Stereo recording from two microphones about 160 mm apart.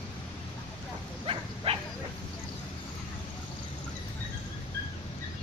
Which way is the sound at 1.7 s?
35° right (ahead or behind).